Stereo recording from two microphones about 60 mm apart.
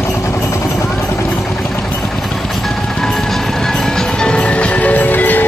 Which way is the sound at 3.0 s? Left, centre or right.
Centre.